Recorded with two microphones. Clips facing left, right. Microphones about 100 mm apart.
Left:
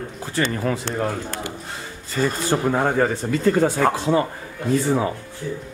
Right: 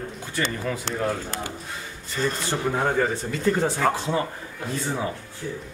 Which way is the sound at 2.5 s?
60° left (ahead or behind).